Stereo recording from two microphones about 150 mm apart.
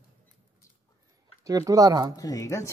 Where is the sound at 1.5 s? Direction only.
25° right (ahead or behind).